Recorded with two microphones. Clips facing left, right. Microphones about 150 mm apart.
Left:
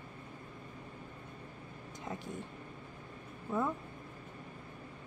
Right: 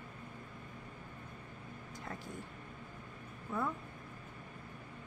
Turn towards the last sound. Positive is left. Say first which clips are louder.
# left 4 dB
turn(degrees=20)  # may be behind; listen again after turning